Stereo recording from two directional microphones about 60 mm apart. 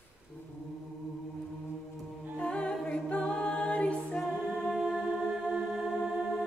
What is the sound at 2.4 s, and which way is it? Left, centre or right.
A capella, centre.